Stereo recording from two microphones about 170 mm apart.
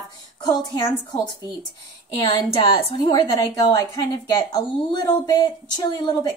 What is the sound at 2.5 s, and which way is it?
A woman's voice, 30° left (ahead or behind).